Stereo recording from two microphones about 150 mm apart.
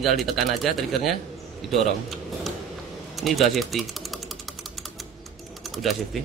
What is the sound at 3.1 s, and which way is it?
Speech, centre (ahead or behind).